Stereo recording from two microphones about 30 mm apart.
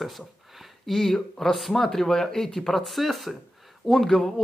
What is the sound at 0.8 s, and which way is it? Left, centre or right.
Speech, centre.